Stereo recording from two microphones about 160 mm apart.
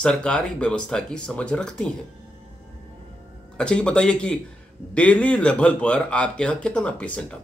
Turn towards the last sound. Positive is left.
turn(degrees=5)  # may be behind; listen again after turning